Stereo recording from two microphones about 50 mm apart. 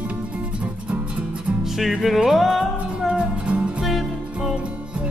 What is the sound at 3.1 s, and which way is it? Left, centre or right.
Music, right.